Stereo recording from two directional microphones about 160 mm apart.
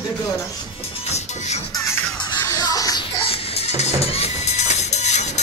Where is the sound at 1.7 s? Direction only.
20° left (ahead or behind).